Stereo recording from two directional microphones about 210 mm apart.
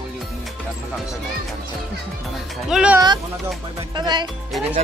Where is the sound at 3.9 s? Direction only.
20° right (ahead or behind).